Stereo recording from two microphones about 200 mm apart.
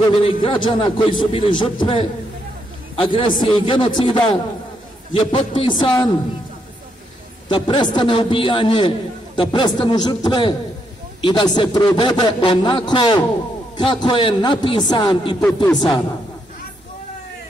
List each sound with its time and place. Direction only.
0.2 s a man's voice: 25° left (ahead or behind)
7.4 s a man's voice: 25° left (ahead or behind)
15.4 s speech: 5° left (ahead or behind)